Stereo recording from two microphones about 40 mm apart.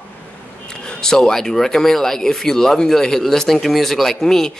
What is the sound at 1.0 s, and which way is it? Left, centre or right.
Speech, centre.